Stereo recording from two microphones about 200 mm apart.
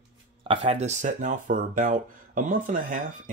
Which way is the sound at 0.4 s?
25° right (ahead or behind).